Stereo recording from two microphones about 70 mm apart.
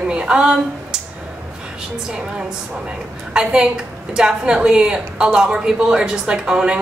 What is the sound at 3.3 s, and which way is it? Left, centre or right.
A woman's voice, centre.